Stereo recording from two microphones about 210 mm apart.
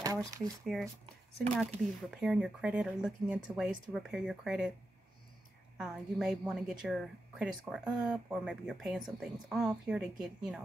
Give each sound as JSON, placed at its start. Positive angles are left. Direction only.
{"t": 0.7, "sound": "a woman's voice", "side_deg": 0}
{"t": 5.8, "sound": "a woman's voice", "side_deg": 0}